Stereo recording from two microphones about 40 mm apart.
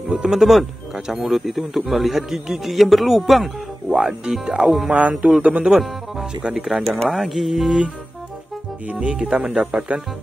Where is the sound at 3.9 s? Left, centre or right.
Centre.